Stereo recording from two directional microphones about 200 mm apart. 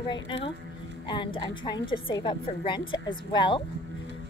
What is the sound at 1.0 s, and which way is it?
A woman's voice, 25° left (ahead or behind).